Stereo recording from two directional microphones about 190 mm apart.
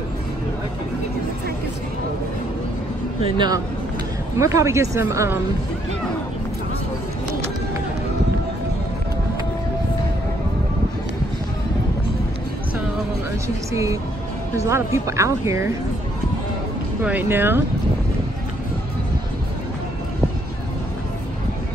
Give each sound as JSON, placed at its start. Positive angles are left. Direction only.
{"t": 3.3, "sound": "speech", "side_deg": -20}
{"t": 14.6, "sound": "speech", "side_deg": -15}
{"t": 17.0, "sound": "speech", "side_deg": -10}